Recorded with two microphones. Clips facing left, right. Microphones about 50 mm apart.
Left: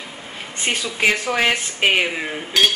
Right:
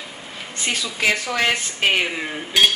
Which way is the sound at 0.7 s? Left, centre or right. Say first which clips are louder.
Left 2 dB; left.